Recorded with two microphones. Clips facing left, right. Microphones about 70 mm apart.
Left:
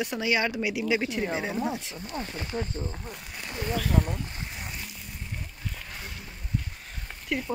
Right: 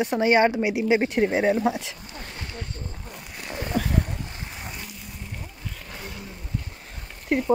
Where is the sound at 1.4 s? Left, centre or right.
Right.